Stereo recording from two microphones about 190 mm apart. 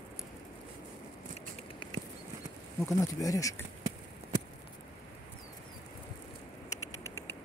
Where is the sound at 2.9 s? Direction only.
15° left (ahead or behind).